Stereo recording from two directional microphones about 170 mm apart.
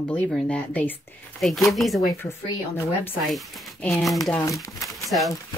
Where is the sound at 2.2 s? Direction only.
15° left (ahead or behind).